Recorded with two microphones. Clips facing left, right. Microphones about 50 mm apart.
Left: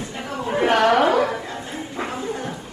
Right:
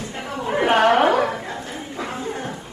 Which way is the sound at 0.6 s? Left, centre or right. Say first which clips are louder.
Right 1 dB; right.